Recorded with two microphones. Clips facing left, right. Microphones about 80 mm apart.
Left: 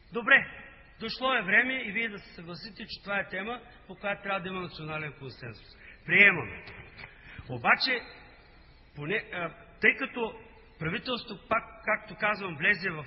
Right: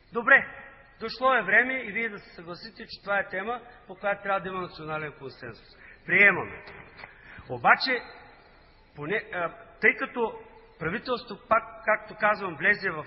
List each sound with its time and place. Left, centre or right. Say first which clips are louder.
0.1 s a man's voice: right 4 dB; right
0.5 s a man's voice: right 3 dB; right
4.5 s a man's voice: right 4 dB; right
6.3 s a man's voice: right 4 dB; right
6.6 s a sound: right 3 dB; right
7.5 s a man's voice: right 5 dB; right
10.2 s a sound: right 5 dB; right
11.0 s a man's voice: right 4 dB; right